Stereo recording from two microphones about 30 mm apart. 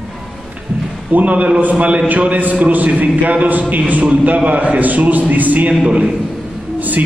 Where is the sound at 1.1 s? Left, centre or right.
Right.